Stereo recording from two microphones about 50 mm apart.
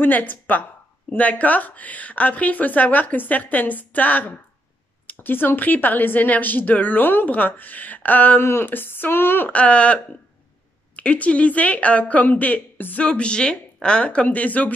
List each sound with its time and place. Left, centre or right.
0.0 s speech: left
8.4 s speech: left
9.5 s speech: left
13.0 s speech: left